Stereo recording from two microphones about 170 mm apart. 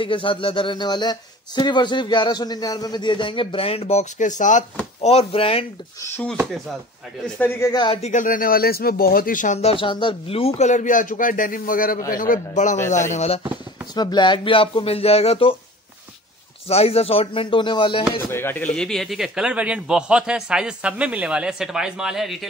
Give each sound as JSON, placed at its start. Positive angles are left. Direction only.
{"t": 0.0, "sound": "a man's voice", "side_deg": 30}
{"t": 5.0, "sound": "speech", "side_deg": 35}
{"t": 6.0, "sound": "speech", "side_deg": 10}
{"t": 7.3, "sound": "speech", "side_deg": 10}
{"t": 7.7, "sound": "a man's voice", "side_deg": 25}
{"t": 8.0, "sound": "speech", "side_deg": 50}
{"t": 13.9, "sound": "speech", "side_deg": 25}
{"t": 16.6, "sound": "speech", "side_deg": 35}
{"t": 18.3, "sound": "speech", "side_deg": 10}
{"t": 18.8, "sound": "a man's voice", "side_deg": 0}